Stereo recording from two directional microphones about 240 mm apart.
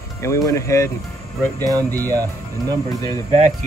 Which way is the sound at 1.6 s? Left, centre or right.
Centre.